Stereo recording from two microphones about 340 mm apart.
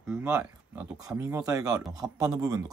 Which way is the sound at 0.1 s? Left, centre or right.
Centre.